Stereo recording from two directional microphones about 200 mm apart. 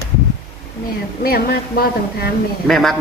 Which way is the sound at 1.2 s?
50° left (ahead or behind).